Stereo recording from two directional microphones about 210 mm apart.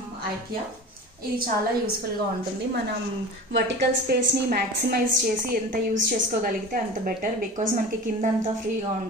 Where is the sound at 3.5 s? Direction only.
50° right (ahead or behind).